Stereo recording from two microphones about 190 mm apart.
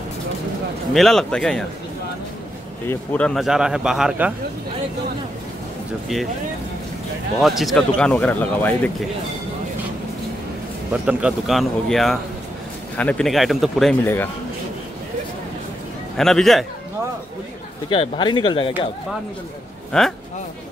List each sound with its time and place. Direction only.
0.9 s speech: centre (ahead or behind)
2.9 s speech: 10° left (ahead or behind)
7.3 s speech: centre (ahead or behind)
10.9 s speech: 5° right (ahead or behind); by 14.3 s 10° left (ahead or behind)
16.2 s speech: centre (ahead or behind)
17.8 s speech: 25° left (ahead or behind)
19.9 s speech: 5° left (ahead or behind)